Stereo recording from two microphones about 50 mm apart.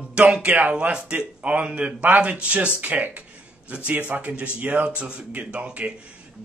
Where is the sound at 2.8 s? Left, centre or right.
Right.